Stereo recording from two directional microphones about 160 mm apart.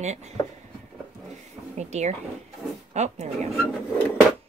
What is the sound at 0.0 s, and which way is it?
Speech, 45° right (ahead or behind).